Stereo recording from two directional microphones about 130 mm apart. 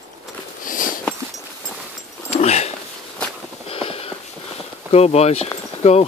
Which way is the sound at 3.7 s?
50° left (ahead or behind).